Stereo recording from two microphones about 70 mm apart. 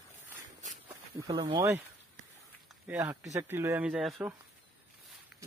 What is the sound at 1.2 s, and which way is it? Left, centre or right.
Speech, right.